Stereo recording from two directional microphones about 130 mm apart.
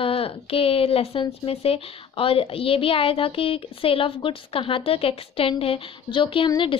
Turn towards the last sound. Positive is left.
turn(degrees=40)  # may be behind; listen again after turning